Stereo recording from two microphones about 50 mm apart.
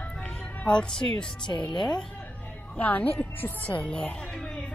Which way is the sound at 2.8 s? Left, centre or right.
Left.